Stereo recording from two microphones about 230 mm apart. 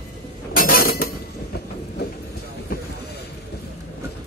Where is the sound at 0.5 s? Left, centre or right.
Left.